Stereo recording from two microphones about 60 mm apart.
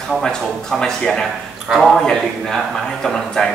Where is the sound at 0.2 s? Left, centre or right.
Centre.